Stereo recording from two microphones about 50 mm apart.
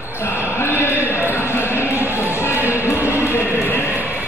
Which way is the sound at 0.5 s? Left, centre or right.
Left.